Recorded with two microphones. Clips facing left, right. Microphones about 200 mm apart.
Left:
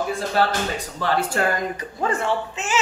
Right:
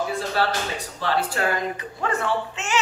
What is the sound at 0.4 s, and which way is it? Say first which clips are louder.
Speech: left 4 dB; 50° left (ahead or behind).